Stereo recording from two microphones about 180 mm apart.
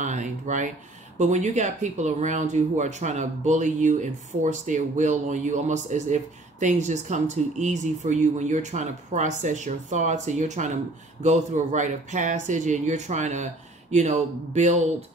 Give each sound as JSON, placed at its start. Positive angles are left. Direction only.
{"t": 0.0, "sound": "speech", "side_deg": -45}